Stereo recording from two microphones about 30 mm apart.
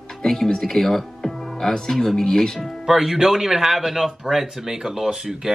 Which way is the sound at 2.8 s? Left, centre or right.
Centre.